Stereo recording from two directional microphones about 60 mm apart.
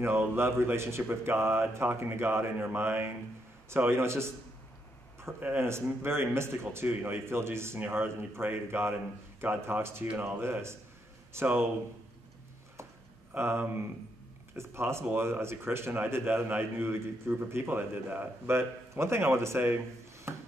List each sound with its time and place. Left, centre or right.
0.0 s a man's voice: right
13.4 s a man's voice: right
20.3 s a sound: right